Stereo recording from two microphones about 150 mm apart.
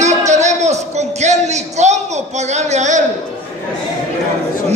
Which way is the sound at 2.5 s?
50° right (ahead or behind).